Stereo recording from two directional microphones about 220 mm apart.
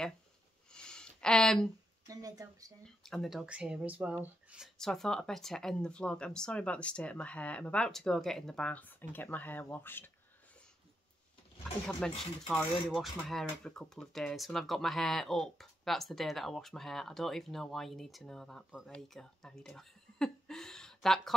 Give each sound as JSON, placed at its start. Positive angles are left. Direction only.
{"t": 0.7, "sound": "a sound", "side_deg": 5}
{"t": 2.0, "sound": "speech", "side_deg": -15}
{"t": 2.8, "sound": "speech", "side_deg": 5}
{"t": 11.8, "sound": "speech", "side_deg": 0}